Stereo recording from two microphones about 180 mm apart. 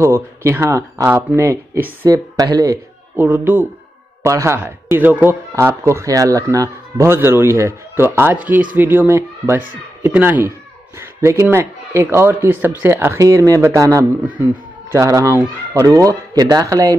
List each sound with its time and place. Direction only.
0.0 s speech: 15° right (ahead or behind)